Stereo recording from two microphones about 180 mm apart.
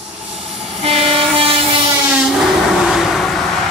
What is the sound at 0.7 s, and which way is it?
Train, 35° right (ahead or behind).